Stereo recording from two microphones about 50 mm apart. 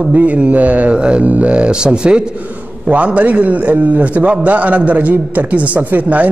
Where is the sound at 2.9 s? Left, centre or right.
Right.